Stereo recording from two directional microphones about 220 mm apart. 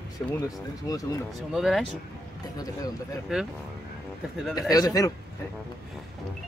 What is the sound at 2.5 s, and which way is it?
Speech, 15° left (ahead or behind).